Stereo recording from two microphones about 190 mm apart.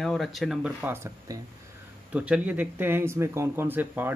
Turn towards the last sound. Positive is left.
turn(degrees=-10)  # may be behind; listen again after turning